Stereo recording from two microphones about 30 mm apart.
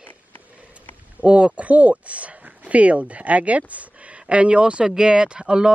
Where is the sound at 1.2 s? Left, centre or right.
Right.